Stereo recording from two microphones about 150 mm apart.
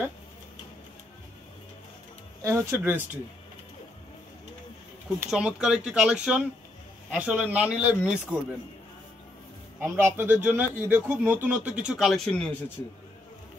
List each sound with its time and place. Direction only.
2.4 s speech: 20° right (ahead or behind)
5.3 s a man's voice: 5° right (ahead or behind)
9.8 s a man's voice: 15° right (ahead or behind); by 12.7 s 5° left (ahead or behind)